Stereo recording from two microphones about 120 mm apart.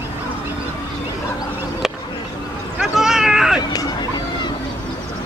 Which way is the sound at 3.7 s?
35° left (ahead or behind).